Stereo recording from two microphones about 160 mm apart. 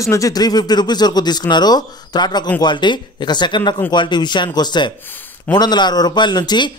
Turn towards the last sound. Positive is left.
turn(degrees=25)  # may be behind; listen again after turning